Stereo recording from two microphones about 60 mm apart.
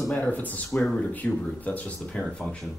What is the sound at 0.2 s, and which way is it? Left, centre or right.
Speech, left.